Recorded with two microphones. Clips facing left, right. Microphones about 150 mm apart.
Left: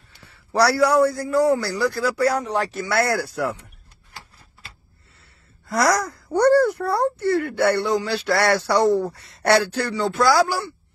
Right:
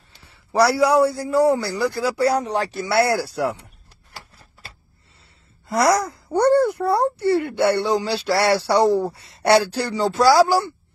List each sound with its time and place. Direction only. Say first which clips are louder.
0.1 s a man's voice: right 1 dB; 20° right (ahead or behind); by 2.8 s 35° right (ahead or behind)
2.8 s speech: right 4 dB; 15° right (ahead or behind)
3.4 s speech: right 2 dB; 25° right (ahead or behind)
5.7 s speech: right 2 dB; 25° right (ahead or behind)